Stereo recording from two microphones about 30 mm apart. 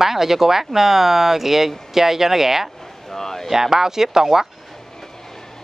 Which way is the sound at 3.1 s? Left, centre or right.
Centre.